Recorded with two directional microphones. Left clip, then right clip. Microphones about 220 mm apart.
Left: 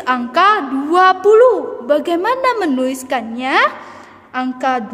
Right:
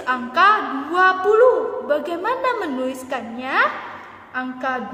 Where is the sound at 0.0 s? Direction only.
50° left (ahead or behind).